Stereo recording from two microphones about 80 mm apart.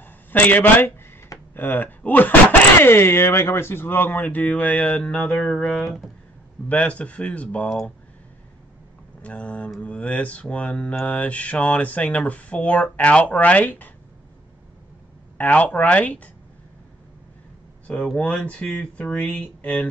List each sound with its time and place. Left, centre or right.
0.0 s speech: left; by 6.0 s centre
6.7 s speech: centre
9.2 s speech: centre
15.3 s speech: centre
18.3 s speech: centre